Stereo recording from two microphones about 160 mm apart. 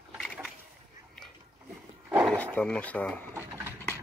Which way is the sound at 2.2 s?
10° left (ahead or behind).